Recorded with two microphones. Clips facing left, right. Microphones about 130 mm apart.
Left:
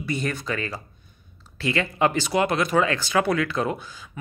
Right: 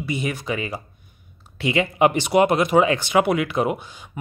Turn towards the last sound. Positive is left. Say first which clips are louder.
# right 3 dB
turn(degrees=-20)  # may be behind; listen again after turning